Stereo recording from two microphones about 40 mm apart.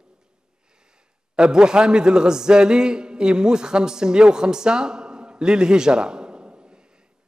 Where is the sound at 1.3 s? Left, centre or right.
Right.